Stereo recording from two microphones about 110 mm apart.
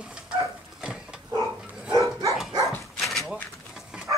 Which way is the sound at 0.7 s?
5° right (ahead or behind).